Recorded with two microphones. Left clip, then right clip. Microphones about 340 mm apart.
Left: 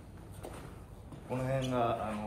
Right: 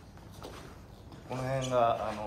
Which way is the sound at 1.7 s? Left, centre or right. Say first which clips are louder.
Right 7 dB; centre.